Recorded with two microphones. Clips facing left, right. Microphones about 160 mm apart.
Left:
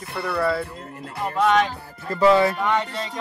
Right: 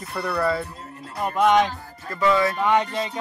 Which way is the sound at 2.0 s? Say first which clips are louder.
Left 4 dB; 30° left (ahead or behind).